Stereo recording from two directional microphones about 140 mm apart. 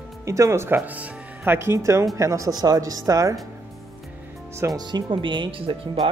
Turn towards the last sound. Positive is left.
turn(degrees=-35)  # may be behind; listen again after turning